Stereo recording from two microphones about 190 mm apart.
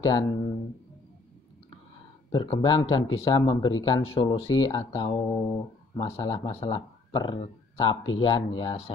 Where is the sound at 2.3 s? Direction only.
25° left (ahead or behind).